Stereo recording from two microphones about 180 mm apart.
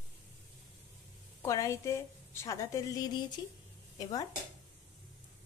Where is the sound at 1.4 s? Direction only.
15° left (ahead or behind).